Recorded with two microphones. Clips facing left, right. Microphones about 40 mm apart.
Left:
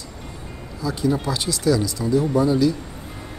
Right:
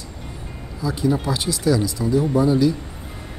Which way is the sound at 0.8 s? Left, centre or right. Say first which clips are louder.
Right 1 dB; centre.